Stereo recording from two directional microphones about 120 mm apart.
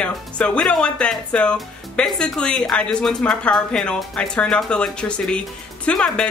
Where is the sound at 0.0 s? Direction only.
10° left (ahead or behind).